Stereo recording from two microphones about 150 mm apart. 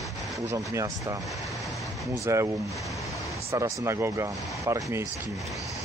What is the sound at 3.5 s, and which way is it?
Speech, 20° right (ahead or behind).